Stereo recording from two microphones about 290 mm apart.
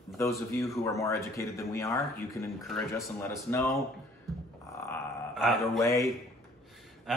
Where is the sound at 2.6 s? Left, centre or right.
Centre.